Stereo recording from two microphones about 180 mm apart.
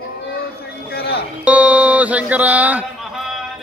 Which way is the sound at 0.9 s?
60° left (ahead or behind).